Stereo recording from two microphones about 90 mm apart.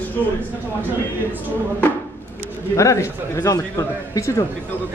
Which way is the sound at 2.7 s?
35° left (ahead or behind).